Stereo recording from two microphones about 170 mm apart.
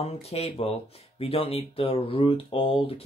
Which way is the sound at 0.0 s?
35° left (ahead or behind).